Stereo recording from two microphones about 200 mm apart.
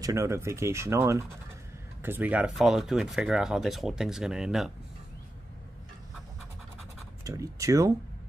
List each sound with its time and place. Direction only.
0.0 s speech: 15° right (ahead or behind)
7.2 s speech: 15° right (ahead or behind)